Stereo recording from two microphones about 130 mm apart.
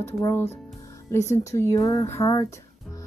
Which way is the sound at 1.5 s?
20° left (ahead or behind).